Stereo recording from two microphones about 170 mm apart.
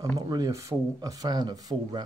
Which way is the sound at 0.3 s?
20° right (ahead or behind).